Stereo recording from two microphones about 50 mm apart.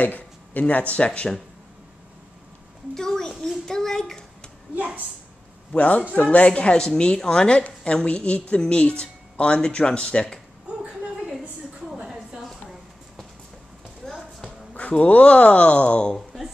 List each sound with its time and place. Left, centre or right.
0.0 s speech: left
2.9 s a child's voice: centre
5.7 s a woman's voice: left
14.0 s basketball bounce: centre
14.7 s a woman's voice: left